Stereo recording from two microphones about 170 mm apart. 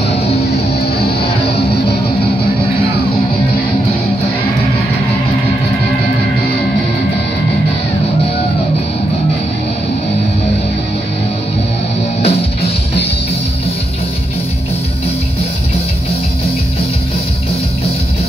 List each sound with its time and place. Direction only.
1.0 s music: 70° left (ahead or behind)
12.2 s music: 35° left (ahead or behind)